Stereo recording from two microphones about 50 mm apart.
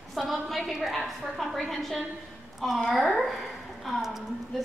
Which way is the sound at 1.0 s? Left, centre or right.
Centre.